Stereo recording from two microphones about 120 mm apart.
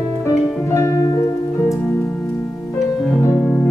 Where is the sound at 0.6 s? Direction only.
25° left (ahead or behind).